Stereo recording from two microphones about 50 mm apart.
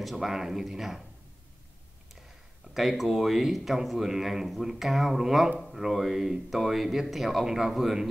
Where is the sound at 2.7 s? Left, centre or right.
Centre.